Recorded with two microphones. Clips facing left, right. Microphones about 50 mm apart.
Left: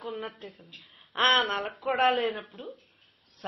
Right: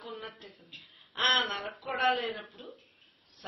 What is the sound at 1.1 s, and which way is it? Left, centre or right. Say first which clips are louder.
Speech: left 4 dB; left.